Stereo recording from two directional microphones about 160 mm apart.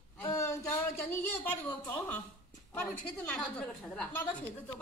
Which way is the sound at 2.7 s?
10° left (ahead or behind).